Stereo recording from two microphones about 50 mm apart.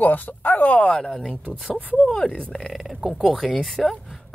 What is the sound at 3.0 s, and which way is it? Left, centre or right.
Speech, centre.